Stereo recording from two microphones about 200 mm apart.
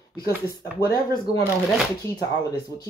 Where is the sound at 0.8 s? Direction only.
20° left (ahead or behind).